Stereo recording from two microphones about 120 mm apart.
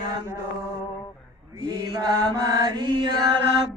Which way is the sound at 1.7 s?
30° right (ahead or behind).